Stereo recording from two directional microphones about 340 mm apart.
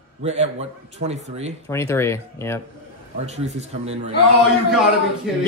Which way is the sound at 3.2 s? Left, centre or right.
Centre.